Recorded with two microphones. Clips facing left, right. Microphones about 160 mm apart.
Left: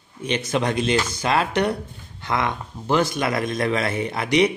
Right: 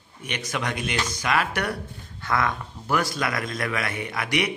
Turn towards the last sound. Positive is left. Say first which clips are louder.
# left 7 dB
turn(degrees=25)  # may be behind; listen again after turning